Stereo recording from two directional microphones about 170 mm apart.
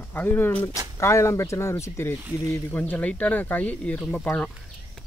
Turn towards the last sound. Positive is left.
turn(degrees=10)  # may be behind; listen again after turning